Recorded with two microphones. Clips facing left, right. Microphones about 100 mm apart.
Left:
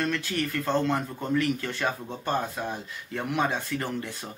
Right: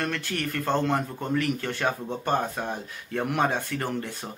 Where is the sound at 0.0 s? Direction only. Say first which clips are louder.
Left 1 dB; 55° right (ahead or behind).